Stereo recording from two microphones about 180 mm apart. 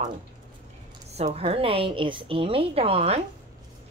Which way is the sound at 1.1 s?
35° right (ahead or behind).